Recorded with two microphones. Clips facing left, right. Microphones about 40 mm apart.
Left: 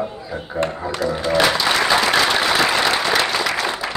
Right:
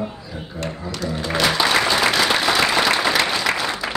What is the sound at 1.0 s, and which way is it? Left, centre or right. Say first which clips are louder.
Speech: left 4 dB; centre.